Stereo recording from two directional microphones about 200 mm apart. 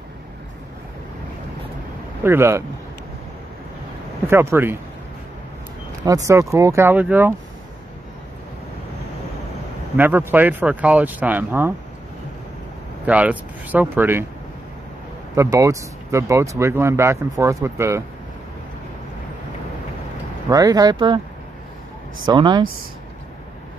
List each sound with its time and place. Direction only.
2.2 s speech: 10° right (ahead or behind)
4.3 s speech: 10° right (ahead or behind)
6.0 s speech: 15° right (ahead or behind)
9.9 s speech: 10° right (ahead or behind)
13.0 s speech: 5° right (ahead or behind)
15.3 s speech: 15° right (ahead or behind)
20.4 s speech: 20° right (ahead or behind)
22.2 s speech: 20° right (ahead or behind)